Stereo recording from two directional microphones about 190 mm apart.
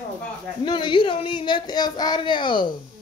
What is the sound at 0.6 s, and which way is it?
Speech, 25° left (ahead or behind).